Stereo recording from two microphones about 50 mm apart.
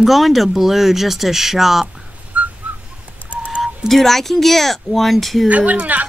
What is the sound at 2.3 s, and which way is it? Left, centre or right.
Whistling, right.